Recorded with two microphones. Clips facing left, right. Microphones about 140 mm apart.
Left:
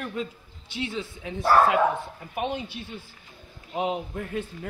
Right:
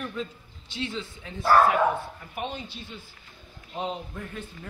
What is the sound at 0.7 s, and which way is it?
Speech, 10° left (ahead or behind).